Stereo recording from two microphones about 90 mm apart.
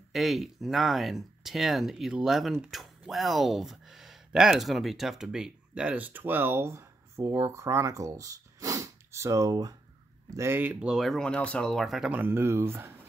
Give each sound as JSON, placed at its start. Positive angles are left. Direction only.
{"t": 0.1, "sound": "speech", "side_deg": 0}
{"t": 10.3, "sound": "speech", "side_deg": -25}
{"t": 11.0, "sound": "speech", "side_deg": 0}
{"t": 11.2, "sound": "speech", "side_deg": 15}
{"t": 12.1, "sound": "speech", "side_deg": -20}